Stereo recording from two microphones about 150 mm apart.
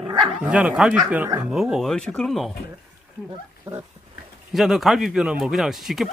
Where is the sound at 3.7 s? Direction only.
20° right (ahead or behind).